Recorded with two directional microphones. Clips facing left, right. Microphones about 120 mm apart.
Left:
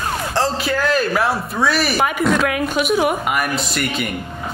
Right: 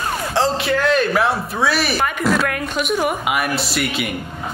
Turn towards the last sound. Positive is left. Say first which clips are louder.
# even
turn(degrees=0)  # may be behind; listen again after turning